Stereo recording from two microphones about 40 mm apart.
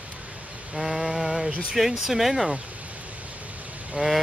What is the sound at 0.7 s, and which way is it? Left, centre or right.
Mantra, centre.